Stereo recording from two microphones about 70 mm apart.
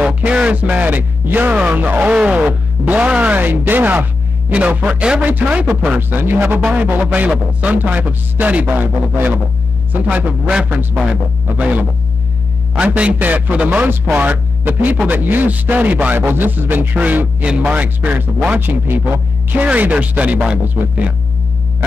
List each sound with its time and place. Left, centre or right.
0.0 s speech: centre
2.1 s music: centre
2.8 s a man's voice: right
6.6 s a man's voice: right
10.5 s music: centre
11.5 s a man's voice: right